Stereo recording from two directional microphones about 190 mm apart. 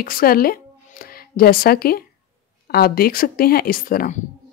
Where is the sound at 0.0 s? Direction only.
50° left (ahead or behind).